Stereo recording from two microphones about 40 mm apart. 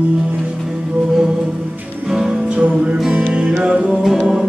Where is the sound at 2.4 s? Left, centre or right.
Right.